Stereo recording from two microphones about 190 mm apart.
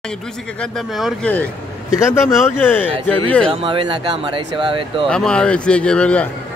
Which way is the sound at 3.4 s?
30° right (ahead or behind).